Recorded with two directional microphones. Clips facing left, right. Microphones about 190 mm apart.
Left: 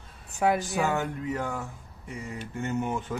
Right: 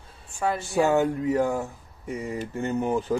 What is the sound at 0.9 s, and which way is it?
Speech, 35° right (ahead or behind).